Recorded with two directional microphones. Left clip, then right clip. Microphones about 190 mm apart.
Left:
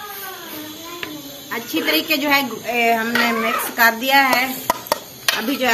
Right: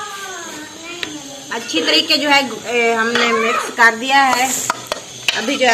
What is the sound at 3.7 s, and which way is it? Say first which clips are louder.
Speech: right 2 dB; 35° left (ahead or behind).